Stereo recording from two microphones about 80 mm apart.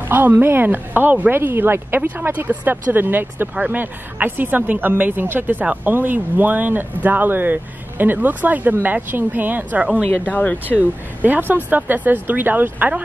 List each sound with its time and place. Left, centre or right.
0.1 s speech: right
10.2 s speech: centre
10.8 s speech: right